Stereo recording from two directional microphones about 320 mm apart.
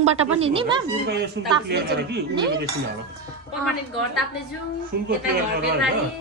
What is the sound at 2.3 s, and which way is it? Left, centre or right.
Speech, centre.